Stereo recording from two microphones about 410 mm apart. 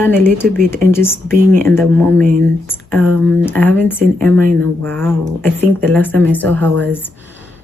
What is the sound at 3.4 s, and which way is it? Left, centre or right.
Speech, centre.